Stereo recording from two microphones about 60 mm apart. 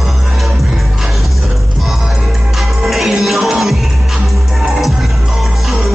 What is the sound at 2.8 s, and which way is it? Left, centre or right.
Music, centre.